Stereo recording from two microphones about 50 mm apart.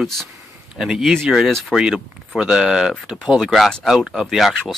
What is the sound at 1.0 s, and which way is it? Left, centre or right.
Speech, centre.